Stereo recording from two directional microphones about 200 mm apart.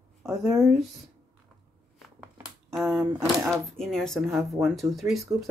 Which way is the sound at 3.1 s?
Centre (ahead or behind).